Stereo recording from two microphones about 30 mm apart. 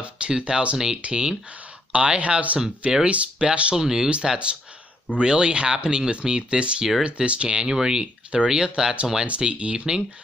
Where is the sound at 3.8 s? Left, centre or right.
Centre.